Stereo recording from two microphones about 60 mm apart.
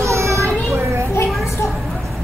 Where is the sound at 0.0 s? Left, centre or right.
Right.